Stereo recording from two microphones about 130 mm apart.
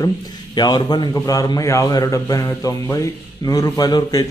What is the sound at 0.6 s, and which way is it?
A man's voice, 35° left (ahead or behind).